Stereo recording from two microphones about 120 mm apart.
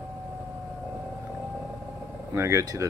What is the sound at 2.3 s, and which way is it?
Speech, 25° right (ahead or behind).